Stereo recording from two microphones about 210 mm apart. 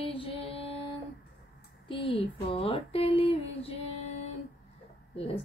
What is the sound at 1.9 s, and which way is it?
A woman's voice, 25° left (ahead or behind).